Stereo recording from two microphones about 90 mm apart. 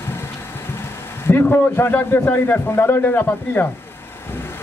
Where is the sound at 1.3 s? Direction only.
25° left (ahead or behind).